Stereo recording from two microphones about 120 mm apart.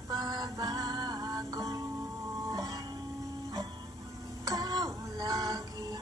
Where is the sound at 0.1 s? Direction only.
35° right (ahead or behind).